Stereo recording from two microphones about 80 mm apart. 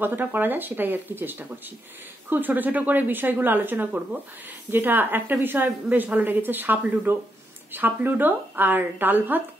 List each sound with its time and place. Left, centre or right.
0.0 s a woman's voice: right